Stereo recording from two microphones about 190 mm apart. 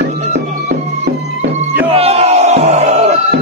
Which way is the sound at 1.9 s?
30° right (ahead or behind).